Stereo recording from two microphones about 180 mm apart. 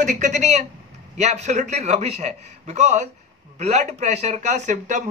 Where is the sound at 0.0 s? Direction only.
45° right (ahead or behind).